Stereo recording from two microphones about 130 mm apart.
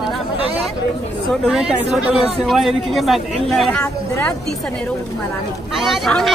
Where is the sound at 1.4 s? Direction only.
5° right (ahead or behind).